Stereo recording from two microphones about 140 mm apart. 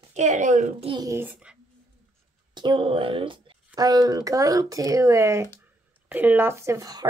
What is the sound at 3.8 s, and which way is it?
Speech, 25° right (ahead or behind).